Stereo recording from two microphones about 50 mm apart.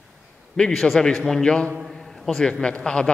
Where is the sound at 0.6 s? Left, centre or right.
Centre.